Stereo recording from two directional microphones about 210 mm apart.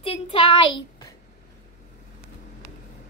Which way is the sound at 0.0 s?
25° left (ahead or behind).